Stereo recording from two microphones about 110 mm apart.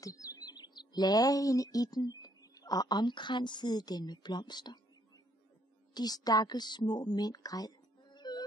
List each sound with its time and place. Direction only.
0.0 s speech: 30° left (ahead or behind)
5.9 s a woman's voice: 35° left (ahead or behind)